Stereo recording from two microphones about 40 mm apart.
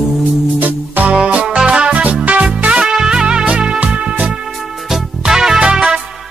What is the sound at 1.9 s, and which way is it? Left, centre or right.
Music, right.